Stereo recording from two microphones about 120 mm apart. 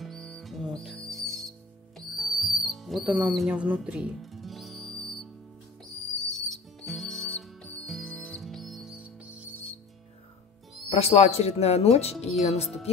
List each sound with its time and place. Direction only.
0.0 s music: 5° left (ahead or behind)
6.3 s music: centre (ahead or behind)
8.4 s music: centre (ahead or behind)
10.9 s speech: 60° left (ahead or behind)